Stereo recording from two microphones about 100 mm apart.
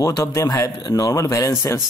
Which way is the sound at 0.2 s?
30° left (ahead or behind).